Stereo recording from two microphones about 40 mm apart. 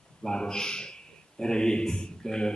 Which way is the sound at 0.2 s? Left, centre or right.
Centre.